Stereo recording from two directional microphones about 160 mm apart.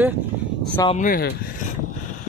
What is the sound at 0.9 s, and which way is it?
Speech, 60° left (ahead or behind).